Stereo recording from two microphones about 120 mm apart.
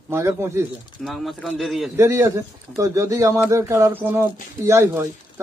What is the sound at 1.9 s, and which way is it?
Speech, 25° right (ahead or behind).